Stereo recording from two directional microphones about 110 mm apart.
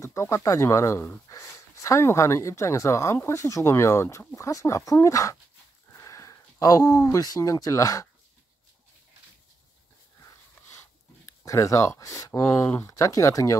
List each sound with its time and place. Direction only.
0.0 s speech: 25° left (ahead or behind)
11.4 s speech: 30° left (ahead or behind)